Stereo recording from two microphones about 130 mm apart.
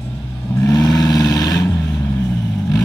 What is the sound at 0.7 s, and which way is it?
Vehicle, 30° left (ahead or behind).